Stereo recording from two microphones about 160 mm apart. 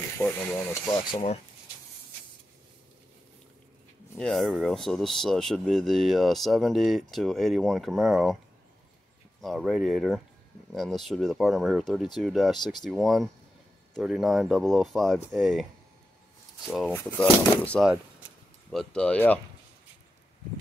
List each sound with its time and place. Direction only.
0.2 s speech: 15° left (ahead or behind)
1.1 s speech: 40° left (ahead or behind)
4.2 s speech: centre (ahead or behind)
9.4 s speech: centre (ahead or behind)
16.9 s speech: 5° left (ahead or behind)